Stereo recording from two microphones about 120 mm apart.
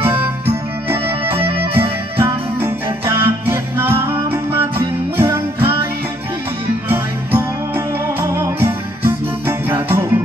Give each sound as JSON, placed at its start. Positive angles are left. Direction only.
{"t": 0.8, "sound": "music", "side_deg": -20}
{"t": 6.9, "sound": "music", "side_deg": -20}